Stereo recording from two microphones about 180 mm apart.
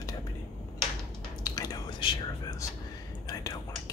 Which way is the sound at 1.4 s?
20° left (ahead or behind).